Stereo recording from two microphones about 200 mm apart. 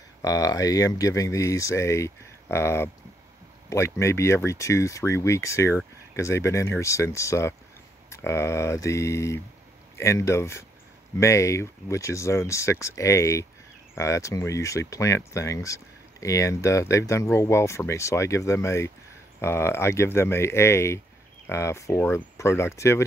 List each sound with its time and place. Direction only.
0.2 s speech: 15° left (ahead or behind)